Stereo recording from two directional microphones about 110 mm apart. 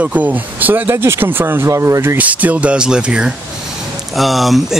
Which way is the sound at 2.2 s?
15° right (ahead or behind).